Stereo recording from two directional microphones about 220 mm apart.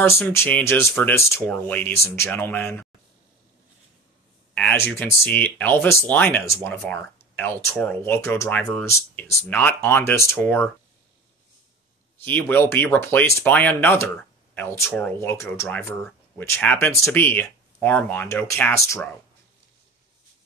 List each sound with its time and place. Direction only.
0.3 s speech: 10° left (ahead or behind)
4.6 s speech: 10° left (ahead or behind)
12.3 s speech: 10° left (ahead or behind)